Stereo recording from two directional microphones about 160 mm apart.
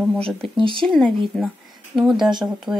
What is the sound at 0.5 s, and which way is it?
Speech, 30° right (ahead or behind).